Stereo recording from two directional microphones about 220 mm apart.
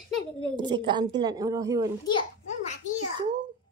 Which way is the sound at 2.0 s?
25° left (ahead or behind).